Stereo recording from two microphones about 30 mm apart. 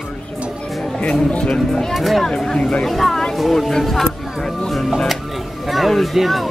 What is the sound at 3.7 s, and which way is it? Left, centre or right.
Music, centre.